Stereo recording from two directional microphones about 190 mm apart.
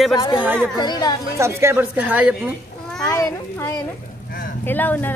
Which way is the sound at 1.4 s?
15° right (ahead or behind).